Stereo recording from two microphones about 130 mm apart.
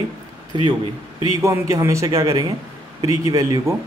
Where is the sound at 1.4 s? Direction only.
25° right (ahead or behind).